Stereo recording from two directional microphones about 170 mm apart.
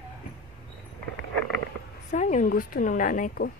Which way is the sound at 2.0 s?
45° left (ahead or behind).